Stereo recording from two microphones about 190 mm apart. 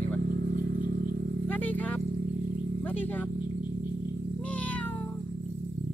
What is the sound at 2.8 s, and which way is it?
Speech, 10° left (ahead or behind).